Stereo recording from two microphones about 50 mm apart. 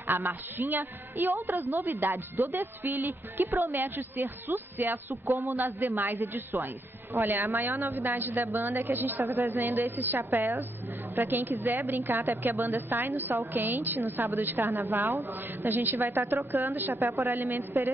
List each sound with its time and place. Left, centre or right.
0.0 s a woman's voice: right
17.0 s a woman's voice: right
17.3 s a woman's voice: right